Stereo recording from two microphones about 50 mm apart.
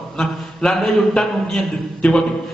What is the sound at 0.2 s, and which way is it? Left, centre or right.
A man's voice, centre.